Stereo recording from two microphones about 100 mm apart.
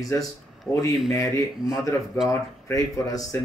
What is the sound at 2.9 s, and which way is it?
Speech, 35° left (ahead or behind).